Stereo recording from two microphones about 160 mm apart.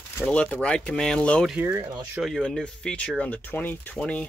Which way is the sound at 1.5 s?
20° right (ahead or behind).